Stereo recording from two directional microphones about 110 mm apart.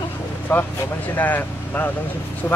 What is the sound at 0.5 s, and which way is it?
Speech, 20° left (ahead or behind).